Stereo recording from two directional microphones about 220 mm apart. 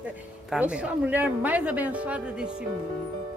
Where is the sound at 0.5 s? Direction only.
5° right (ahead or behind).